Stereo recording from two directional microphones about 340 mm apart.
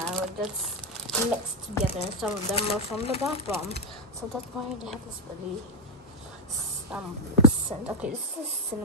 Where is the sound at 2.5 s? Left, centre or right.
Centre.